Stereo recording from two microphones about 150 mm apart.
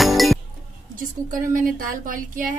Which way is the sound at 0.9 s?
65° right (ahead or behind).